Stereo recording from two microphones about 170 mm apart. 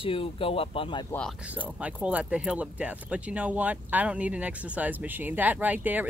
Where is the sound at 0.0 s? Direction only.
30° left (ahead or behind).